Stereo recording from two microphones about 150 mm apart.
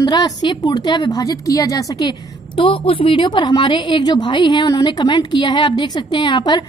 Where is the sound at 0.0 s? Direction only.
30° left (ahead or behind).